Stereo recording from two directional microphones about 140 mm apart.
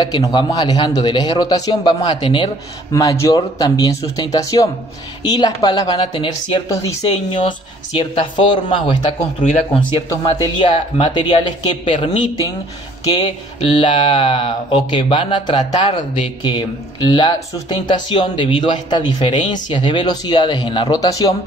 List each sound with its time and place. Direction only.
0.0 s speech: 30° left (ahead or behind)
2.9 s speech: 25° left (ahead or behind)
8.0 s speech: 35° left (ahead or behind)